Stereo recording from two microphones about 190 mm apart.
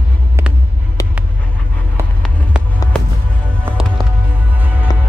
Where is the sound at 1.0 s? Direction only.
20° left (ahead or behind).